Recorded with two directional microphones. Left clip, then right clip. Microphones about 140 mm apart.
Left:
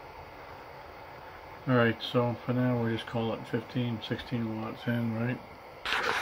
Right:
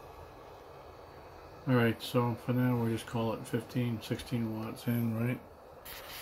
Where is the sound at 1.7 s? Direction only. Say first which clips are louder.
Left 4 dB; 10° right (ahead or behind).